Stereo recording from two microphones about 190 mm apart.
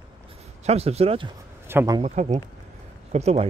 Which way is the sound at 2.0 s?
35° right (ahead or behind).